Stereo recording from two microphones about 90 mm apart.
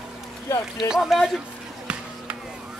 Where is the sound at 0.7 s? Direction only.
5° right (ahead or behind).